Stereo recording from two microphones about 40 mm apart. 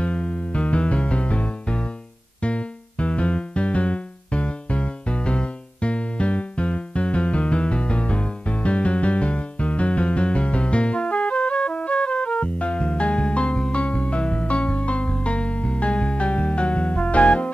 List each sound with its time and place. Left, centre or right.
0.0 s music: left